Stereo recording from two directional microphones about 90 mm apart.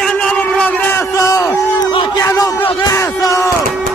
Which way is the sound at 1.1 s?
35° left (ahead or behind).